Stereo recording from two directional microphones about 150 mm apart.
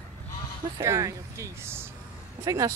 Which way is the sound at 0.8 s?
20° right (ahead or behind).